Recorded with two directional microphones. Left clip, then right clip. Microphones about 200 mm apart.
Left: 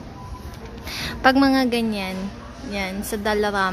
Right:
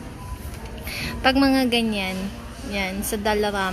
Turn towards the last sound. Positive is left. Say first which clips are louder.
# left 1 dB
turn(degrees=10)  # may be behind; listen again after turning